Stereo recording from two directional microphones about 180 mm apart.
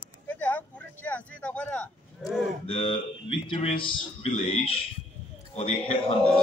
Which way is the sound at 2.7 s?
30° left (ahead or behind).